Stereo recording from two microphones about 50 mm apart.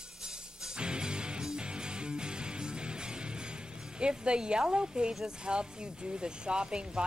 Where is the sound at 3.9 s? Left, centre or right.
Centre.